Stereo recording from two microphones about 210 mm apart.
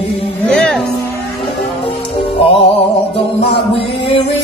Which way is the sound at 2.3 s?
25° left (ahead or behind).